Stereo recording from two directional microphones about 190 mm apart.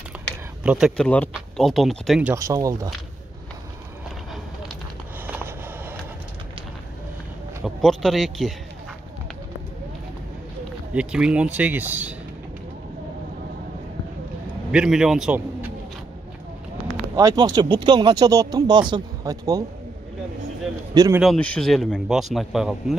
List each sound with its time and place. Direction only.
0.1 s a sound: 10° right (ahead or behind)
0.7 s speech: 5° right (ahead or behind)
2.3 s speech: 15° right (ahead or behind)
5.2 s a sound: 10° right (ahead or behind)
7.6 s a man's voice: centre (ahead or behind)
10.9 s speech: 5° right (ahead or behind)
14.7 s speech: 5° right (ahead or behind)
17.1 s speech: 15° right (ahead or behind)
20.9 s speech: 20° right (ahead or behind)
21.2 s speech: 5° left (ahead or behind)